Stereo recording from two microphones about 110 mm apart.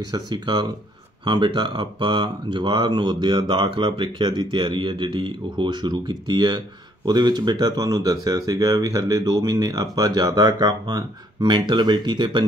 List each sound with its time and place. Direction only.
0.1 s speech: 40° right (ahead or behind)